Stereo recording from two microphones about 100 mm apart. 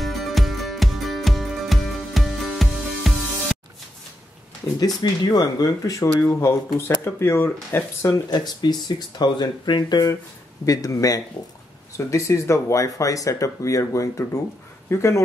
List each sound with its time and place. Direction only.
0.0 s music: centre (ahead or behind)
4.7 s speech: 40° left (ahead or behind)
6.2 s speech: 25° left (ahead or behind)
8.1 s speech: 45° left (ahead or behind)
10.6 s speech: 35° left (ahead or behind)